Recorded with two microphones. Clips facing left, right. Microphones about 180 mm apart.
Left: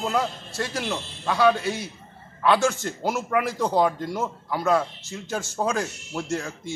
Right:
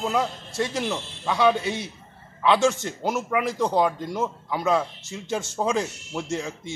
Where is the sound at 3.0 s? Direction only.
5° left (ahead or behind).